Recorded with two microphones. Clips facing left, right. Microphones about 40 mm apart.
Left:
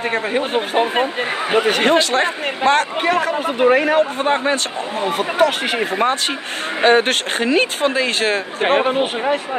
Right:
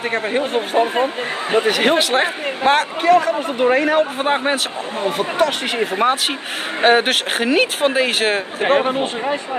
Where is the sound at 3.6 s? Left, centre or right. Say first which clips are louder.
Left 2 dB; centre.